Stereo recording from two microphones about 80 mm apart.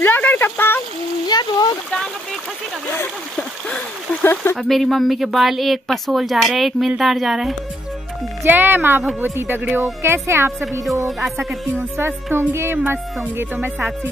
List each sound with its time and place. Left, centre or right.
0.0 s a sound: left
1.2 s splash: left
3.3 s splash: centre
4.2 s a sound: left
4.6 s speech: centre
8.5 s a woman's voice: right
11.1 s speech: centre
11.3 s speech: right